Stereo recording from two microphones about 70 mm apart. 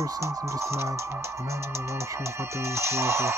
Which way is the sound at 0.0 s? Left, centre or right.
Right.